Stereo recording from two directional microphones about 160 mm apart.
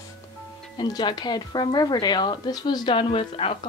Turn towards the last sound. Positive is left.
turn(degrees=35)  # may be behind; listen again after turning